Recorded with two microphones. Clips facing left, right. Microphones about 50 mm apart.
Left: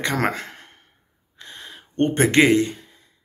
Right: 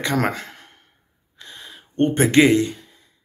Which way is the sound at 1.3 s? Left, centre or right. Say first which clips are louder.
Left 1 dB; left.